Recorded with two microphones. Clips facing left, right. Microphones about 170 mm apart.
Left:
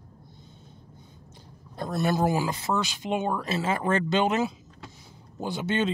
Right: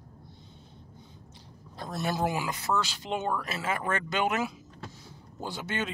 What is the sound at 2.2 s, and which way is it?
Speech, 35° left (ahead or behind).